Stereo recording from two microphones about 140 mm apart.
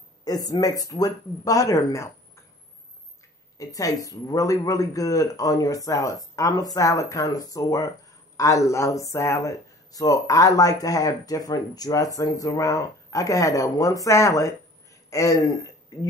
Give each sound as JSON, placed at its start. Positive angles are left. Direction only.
{"t": 0.2, "sound": "speech", "side_deg": 25}
{"t": 3.5, "sound": "speech", "side_deg": 25}